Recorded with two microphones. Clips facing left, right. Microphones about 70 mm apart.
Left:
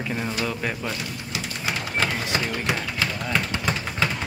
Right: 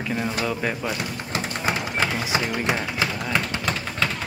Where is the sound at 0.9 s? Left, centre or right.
Right.